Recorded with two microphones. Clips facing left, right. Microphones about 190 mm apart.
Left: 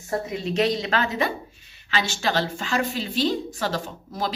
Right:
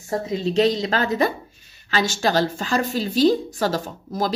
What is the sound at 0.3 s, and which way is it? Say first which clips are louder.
A woman's voice: right 5 dB; 30° right (ahead or behind).